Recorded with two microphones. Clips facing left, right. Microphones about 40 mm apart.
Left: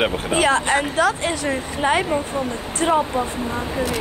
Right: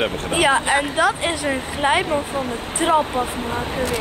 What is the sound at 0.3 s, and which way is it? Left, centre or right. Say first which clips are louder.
Speech: right 2 dB; centre.